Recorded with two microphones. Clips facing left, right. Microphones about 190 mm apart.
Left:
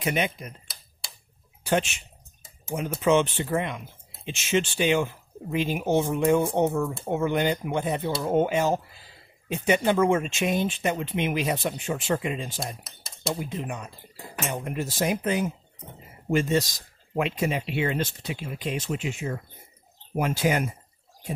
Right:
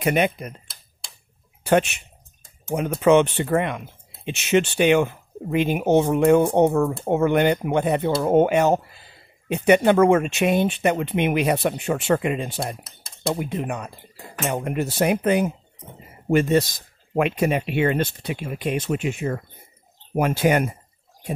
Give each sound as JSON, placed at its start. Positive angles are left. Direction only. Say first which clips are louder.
{"t": 0.0, "sound": "speech", "louder": "right 6 dB", "side_deg": -60}
{"t": 1.6, "sound": "speech", "louder": "right 6 dB", "side_deg": -60}